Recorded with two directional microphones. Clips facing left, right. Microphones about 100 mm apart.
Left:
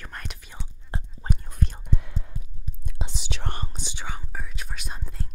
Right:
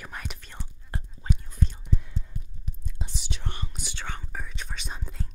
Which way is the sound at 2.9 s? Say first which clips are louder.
Left 3 dB; 90° left.